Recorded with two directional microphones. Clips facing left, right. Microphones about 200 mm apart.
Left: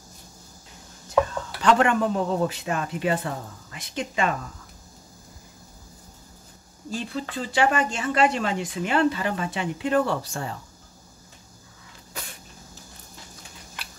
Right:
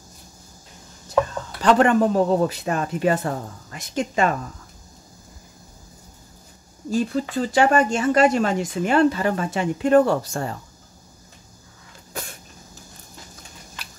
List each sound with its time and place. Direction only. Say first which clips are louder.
1.6 s speech: right 4 dB; 35° right (ahead or behind)
6.9 s speech: right 8 dB; 45° right (ahead or behind)